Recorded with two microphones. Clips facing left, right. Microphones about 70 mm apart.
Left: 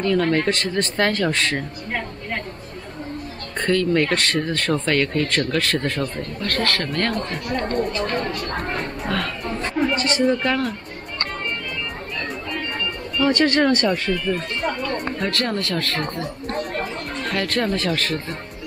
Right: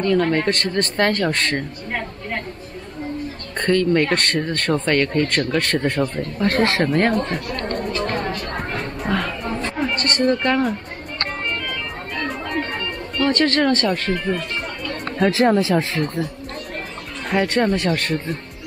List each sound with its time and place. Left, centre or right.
0.0 s speech: centre
3.5 s speech: centre
6.4 s speech: right
8.7 s a sound: centre
12.4 s music: right
13.2 s speech: centre
14.1 s speech: right
15.1 s speech: centre
17.3 s speech: centre